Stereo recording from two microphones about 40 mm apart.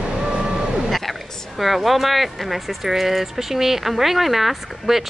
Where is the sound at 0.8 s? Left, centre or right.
Centre.